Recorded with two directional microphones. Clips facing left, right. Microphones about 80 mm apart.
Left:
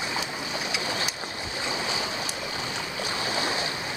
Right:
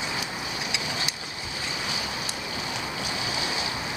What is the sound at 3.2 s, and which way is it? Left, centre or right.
Waves, left.